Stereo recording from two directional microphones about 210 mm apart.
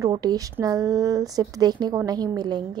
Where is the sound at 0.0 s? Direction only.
20° right (ahead or behind).